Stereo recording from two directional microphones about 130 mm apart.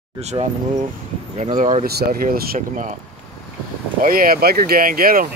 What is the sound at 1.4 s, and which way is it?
Speech, 75° right (ahead or behind).